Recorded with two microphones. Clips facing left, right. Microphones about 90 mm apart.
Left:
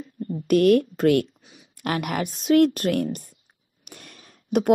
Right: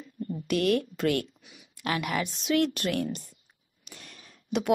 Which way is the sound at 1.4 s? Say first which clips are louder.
Left 4 dB; 35° left (ahead or behind).